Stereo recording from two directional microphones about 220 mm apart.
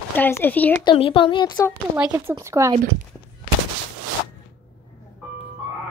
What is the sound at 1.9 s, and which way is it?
Speech, 10° right (ahead or behind).